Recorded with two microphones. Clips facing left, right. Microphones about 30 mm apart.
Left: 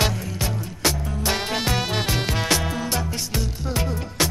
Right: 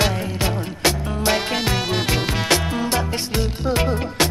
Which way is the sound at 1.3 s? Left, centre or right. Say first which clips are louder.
Right 1 dB; right.